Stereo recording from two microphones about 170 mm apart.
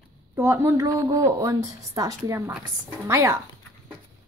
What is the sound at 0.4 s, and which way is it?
Speech, 15° right (ahead or behind).